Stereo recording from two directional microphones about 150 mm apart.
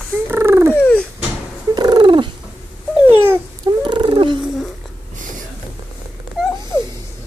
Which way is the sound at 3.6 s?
30° right (ahead or behind).